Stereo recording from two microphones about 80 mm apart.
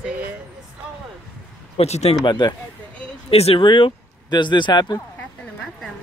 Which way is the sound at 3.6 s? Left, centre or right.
Left.